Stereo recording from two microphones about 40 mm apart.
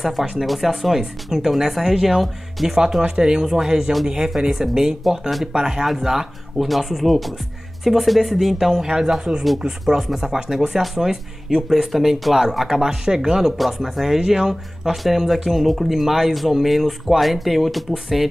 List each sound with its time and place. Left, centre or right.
0.0 s speech: centre
3.0 s speech: centre